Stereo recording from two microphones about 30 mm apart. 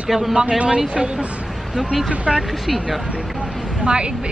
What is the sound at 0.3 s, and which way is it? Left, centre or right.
Speech, right.